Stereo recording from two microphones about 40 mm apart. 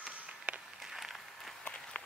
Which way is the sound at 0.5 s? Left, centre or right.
Right.